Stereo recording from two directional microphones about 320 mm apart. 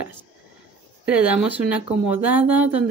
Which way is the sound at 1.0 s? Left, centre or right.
Centre.